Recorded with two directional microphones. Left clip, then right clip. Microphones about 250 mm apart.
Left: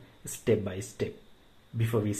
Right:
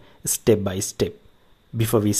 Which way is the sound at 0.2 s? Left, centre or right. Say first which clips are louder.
Right 9 dB; right.